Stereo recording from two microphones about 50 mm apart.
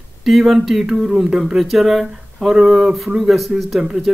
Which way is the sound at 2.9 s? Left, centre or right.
Centre.